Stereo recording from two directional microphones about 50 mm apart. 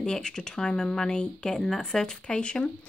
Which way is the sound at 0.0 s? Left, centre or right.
Centre.